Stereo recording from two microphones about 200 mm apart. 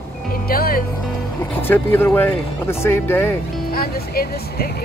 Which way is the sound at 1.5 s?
10° left (ahead or behind).